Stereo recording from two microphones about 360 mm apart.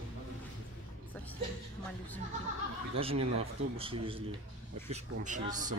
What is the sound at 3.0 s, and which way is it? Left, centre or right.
Speech, centre.